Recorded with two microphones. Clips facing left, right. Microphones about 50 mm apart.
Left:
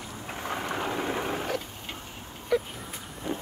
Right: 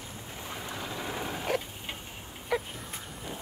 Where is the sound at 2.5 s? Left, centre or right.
Centre.